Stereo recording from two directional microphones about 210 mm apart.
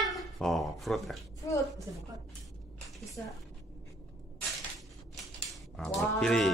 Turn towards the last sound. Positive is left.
turn(degrees=0)  # may be behind; listen again after turning